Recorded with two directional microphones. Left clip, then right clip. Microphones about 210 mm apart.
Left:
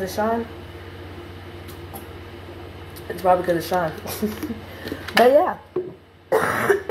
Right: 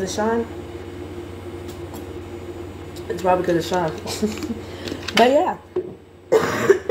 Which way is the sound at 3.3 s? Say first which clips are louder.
Even; 5° right (ahead or behind).